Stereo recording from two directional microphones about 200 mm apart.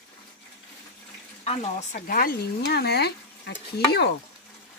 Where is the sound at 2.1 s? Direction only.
45° left (ahead or behind).